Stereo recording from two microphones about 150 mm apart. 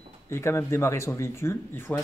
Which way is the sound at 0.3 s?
15° left (ahead or behind).